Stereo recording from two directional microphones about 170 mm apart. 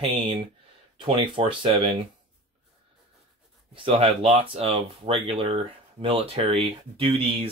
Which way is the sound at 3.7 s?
30° right (ahead or behind).